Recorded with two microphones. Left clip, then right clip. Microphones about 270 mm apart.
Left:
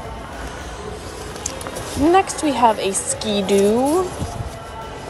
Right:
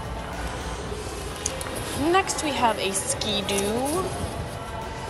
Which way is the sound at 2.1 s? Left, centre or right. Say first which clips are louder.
Left 5 dB; centre.